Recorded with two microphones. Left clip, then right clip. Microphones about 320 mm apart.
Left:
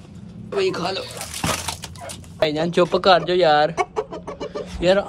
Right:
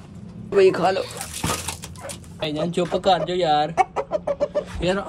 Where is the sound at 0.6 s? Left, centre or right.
Centre.